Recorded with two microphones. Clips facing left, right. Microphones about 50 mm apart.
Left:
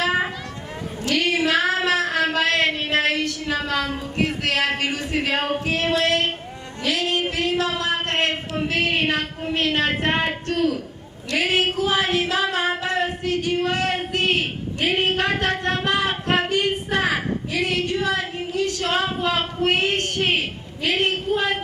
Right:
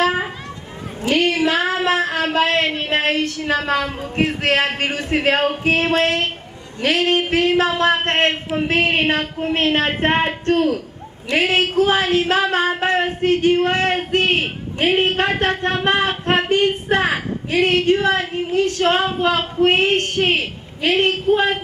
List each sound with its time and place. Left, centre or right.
1.1 s child singing: right
1.9 s a sound: right
3.0 s speech: right